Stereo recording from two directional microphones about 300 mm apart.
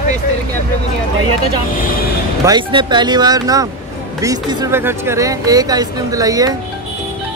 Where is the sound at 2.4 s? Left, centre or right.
Centre.